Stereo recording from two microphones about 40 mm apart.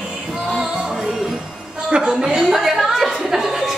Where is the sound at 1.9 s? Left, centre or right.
Right; by 3.7 s centre.